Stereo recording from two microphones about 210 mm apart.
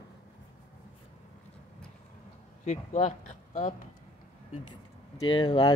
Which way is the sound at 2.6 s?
35° left (ahead or behind).